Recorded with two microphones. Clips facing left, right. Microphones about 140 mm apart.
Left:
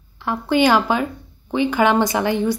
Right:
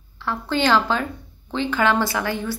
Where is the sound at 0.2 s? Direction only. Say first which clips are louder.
Left 5 dB; 15° left (ahead or behind).